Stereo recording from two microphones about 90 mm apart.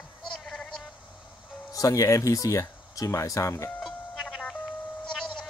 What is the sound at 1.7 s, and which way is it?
Speech, 40° left (ahead or behind).